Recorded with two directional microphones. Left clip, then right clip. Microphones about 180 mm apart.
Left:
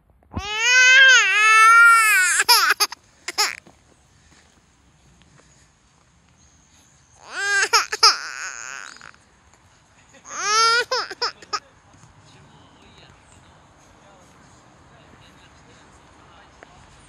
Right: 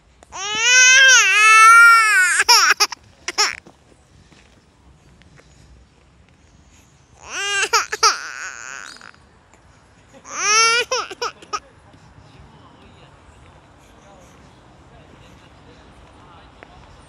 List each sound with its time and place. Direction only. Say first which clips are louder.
0.4 s baby cry: right 2 dB; 10° left (ahead or behind)
7.2 s babbling: even; 5° right (ahead or behind)
10.2 s laughter: right 3 dB; centre (ahead or behind)